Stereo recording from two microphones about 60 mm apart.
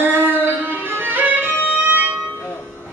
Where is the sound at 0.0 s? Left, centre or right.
Right.